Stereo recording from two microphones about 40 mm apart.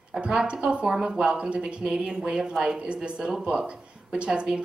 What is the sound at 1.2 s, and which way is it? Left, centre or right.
Speech, right.